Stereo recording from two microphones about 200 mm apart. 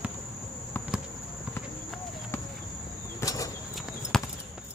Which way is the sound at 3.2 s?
15° left (ahead or behind).